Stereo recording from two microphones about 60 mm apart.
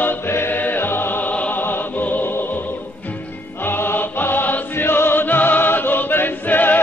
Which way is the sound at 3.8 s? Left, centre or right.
Left.